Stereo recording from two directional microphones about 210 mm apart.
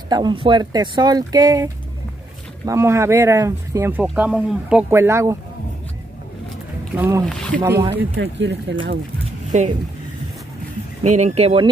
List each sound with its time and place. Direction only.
0.1 s speech: 20° right (ahead or behind)
7.0 s speech: 15° right (ahead or behind)
7.2 s speech: 5° left (ahead or behind)
7.6 s speech: 15° right (ahead or behind)
8.2 s speech: 55° right (ahead or behind)
9.5 s speech: 35° right (ahead or behind)
11.1 s speech: 35° right (ahead or behind)